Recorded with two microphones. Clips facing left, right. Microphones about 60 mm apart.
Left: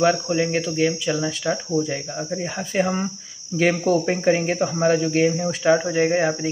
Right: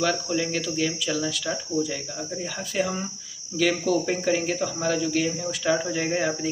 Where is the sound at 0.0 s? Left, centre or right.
Left.